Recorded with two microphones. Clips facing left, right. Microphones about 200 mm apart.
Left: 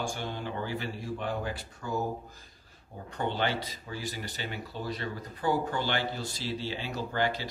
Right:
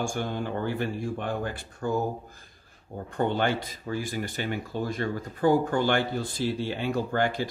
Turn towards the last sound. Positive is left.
turn(degrees=-50)  # may be behind; listen again after turning